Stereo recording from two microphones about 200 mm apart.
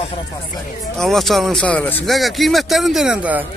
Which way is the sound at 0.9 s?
Centre (ahead or behind).